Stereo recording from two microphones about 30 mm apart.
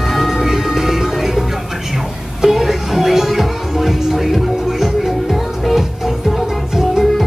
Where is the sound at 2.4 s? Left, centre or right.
Centre.